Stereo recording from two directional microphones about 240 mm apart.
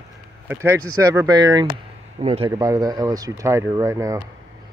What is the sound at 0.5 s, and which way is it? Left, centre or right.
Speech, centre.